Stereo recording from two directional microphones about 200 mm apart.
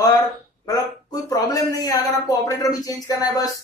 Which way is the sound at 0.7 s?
20° left (ahead or behind).